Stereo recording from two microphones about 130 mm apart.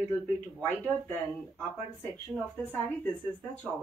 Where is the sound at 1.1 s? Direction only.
15° left (ahead or behind).